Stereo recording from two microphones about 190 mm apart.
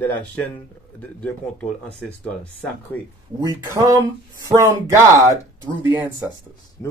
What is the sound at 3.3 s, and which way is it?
Speech, 20° right (ahead or behind).